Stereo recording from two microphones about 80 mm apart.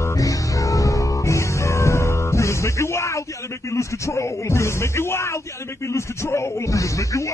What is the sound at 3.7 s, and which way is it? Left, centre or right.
Speech, left.